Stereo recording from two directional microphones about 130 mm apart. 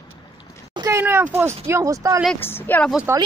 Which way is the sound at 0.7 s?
20° right (ahead or behind).